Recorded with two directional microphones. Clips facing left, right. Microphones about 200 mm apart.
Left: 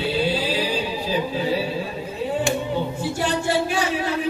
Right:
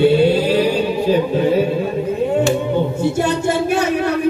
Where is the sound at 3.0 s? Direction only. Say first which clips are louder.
Right 7 dB; 45° right (ahead or behind).